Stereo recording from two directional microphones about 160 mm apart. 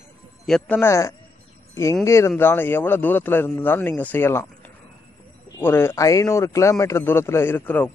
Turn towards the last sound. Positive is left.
turn(degrees=10)  # may be behind; listen again after turning